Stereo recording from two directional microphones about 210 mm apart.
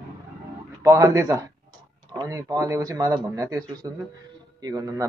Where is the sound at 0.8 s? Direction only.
15° right (ahead or behind).